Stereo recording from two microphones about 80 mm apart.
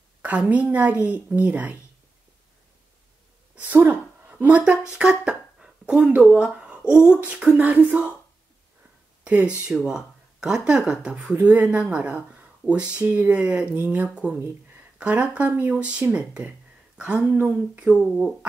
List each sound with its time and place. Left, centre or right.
0.2 s a woman's voice: centre
3.5 s a woman's voice: right
9.2 s speech: centre
17.4 s a woman's voice: right
18.0 s speech: centre